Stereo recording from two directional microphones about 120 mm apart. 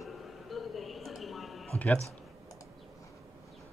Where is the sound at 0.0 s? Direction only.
Centre (ahead or behind).